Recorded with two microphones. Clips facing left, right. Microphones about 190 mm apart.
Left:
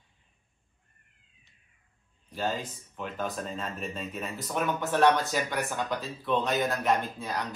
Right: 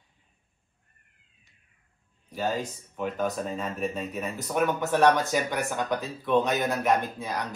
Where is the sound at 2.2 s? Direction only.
15° right (ahead or behind).